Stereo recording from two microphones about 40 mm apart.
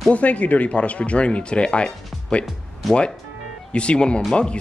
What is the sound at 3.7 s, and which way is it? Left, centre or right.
Speech, left.